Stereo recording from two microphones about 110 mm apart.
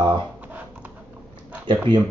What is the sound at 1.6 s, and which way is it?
Speech, 45° right (ahead or behind).